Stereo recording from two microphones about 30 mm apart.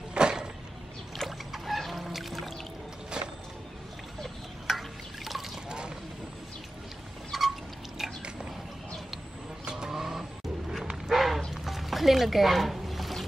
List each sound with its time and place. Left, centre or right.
0.1 s a sound: right
1.5 s chicken: centre
3.2 s vehicle: right
4.6 s drip: centre
5.7 s vehicle: right
7.3 s a sound: centre
8.0 s biting: centre
9.8 s vehicle: centre
11.1 s a sound: centre
11.5 s music: centre